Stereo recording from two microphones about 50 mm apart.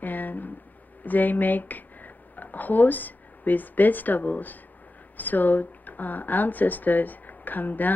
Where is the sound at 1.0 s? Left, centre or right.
Left.